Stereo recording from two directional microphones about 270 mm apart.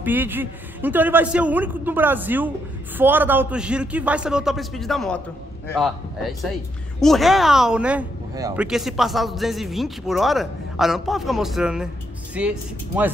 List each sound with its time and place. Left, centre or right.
0.0 s a man's voice: centre